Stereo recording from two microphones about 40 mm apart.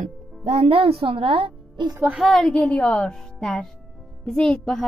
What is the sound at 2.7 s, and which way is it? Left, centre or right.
Speech, left.